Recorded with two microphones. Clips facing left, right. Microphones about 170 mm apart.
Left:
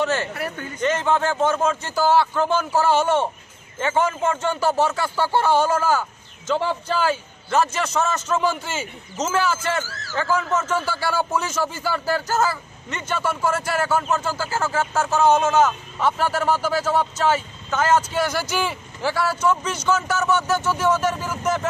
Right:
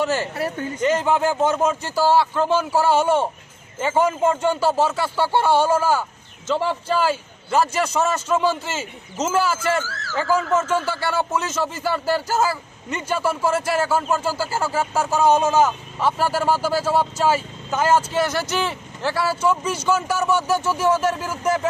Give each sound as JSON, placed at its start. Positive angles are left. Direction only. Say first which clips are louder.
{"t": 0.0, "sound": "speech", "louder": "right 1 dB", "side_deg": -5}
{"t": 0.3, "sound": "speech", "louder": "right 4 dB", "side_deg": -30}
{"t": 0.7, "sound": "speech", "louder": "right 1 dB", "side_deg": -10}
{"t": 4.6, "sound": "speech", "louder": "right 1 dB", "side_deg": -30}
{"t": 4.8, "sound": "speech", "louder": "right 1 dB", "side_deg": -5}
{"t": 10.9, "sound": "speech", "louder": "even", "side_deg": 0}
{"t": 18.1, "sound": "speech", "louder": "right 1 dB", "side_deg": 0}